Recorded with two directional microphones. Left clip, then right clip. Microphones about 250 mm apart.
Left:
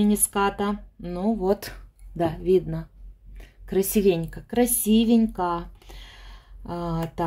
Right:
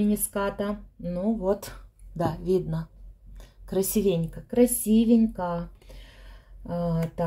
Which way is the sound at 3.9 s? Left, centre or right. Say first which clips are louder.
Left 4 dB; left.